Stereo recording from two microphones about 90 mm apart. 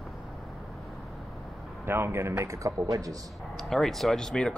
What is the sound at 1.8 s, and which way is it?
Speech, 25° right (ahead or behind).